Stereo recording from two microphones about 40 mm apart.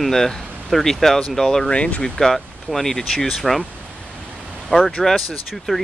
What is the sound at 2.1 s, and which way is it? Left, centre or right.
Speech, centre.